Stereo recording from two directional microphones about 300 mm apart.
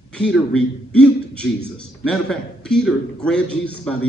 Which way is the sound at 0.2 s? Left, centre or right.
Centre.